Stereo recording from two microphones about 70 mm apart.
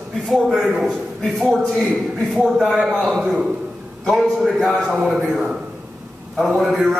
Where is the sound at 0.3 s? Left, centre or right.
Centre.